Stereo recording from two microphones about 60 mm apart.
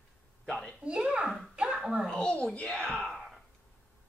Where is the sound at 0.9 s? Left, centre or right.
Centre.